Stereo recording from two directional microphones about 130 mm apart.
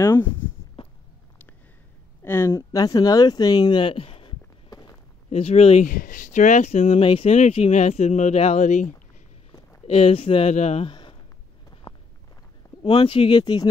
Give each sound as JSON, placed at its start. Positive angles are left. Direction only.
{"t": 0.0, "sound": "speech", "side_deg": 20}
{"t": 2.2, "sound": "speech", "side_deg": 20}
{"t": 4.6, "sound": "walk", "side_deg": 30}
{"t": 5.3, "sound": "speech", "side_deg": 50}
{"t": 5.9, "sound": "speech", "side_deg": 90}
{"t": 9.8, "sound": "speech", "side_deg": 50}
{"t": 10.9, "sound": "a sound", "side_deg": 35}
{"t": 11.9, "sound": "walk", "side_deg": 25}
{"t": 12.8, "sound": "speech", "side_deg": 40}